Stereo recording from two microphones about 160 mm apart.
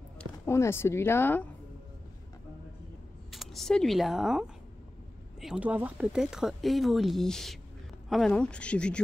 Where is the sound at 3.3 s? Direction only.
Centre (ahead or behind).